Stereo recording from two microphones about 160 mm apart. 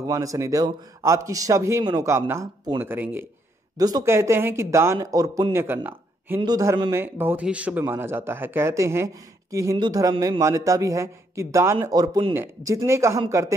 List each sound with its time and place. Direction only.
0.0 s a man's voice: 20° right (ahead or behind)
3.7 s a man's voice: 25° right (ahead or behind)
5.9 s a sound: 10° right (ahead or behind)
6.4 s a man's voice: 20° right (ahead or behind)
10.1 s a man's voice: 30° right (ahead or behind)
10.4 s a man's voice: 20° right (ahead or behind)
12.4 s a man's voice: 20° right (ahead or behind)